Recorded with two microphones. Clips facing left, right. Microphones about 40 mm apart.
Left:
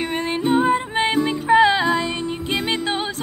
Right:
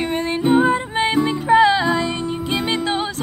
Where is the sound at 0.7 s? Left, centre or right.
Centre.